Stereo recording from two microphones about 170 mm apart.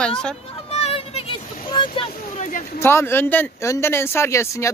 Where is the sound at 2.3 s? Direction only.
45° left (ahead or behind).